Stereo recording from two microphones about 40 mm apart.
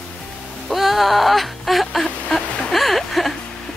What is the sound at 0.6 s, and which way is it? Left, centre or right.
Whimper, centre.